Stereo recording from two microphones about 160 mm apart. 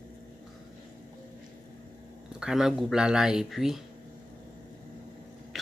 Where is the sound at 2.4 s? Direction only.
5° right (ahead or behind).